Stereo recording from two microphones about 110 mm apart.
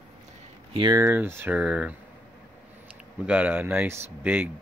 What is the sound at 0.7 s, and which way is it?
Speech, 45° right (ahead or behind).